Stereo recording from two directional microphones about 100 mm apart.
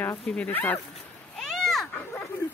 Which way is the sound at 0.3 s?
15° left (ahead or behind).